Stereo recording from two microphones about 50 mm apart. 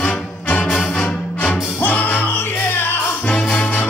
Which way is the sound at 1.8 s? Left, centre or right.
Left.